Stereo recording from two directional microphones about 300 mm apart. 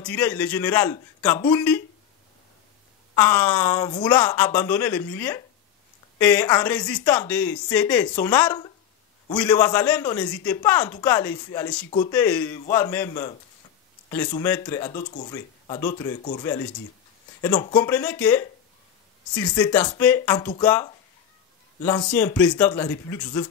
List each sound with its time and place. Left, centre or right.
0.0 s speech: centre
3.2 s a man's voice: centre
15.0 s speech: left
17.4 s speech: centre